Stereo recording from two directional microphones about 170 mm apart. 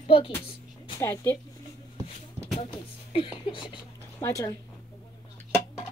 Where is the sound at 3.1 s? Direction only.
30° left (ahead or behind).